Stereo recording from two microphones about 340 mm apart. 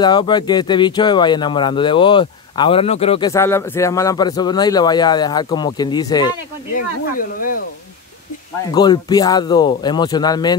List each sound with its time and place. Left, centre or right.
0.0 s speech: centre
6.7 s speech: left
8.7 s speech: centre